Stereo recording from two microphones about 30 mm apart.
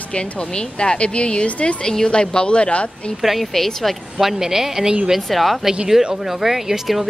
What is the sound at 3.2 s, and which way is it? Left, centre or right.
Speech, centre.